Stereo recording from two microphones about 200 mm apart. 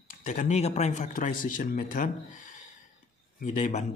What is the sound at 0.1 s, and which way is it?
Speech, 40° left (ahead or behind).